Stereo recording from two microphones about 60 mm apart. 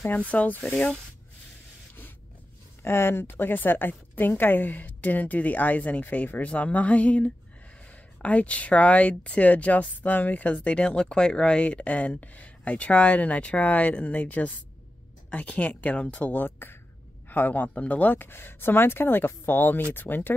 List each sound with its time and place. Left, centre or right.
0.3 s a woman's voice: left
2.8 s a woman's voice: left